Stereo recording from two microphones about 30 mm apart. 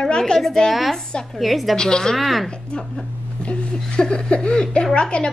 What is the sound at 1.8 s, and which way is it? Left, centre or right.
Speech, left.